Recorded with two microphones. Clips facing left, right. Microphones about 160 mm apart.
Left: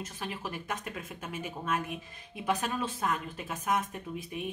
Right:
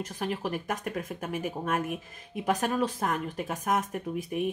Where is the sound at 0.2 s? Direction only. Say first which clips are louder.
Right 8 dB; 45° right (ahead or behind).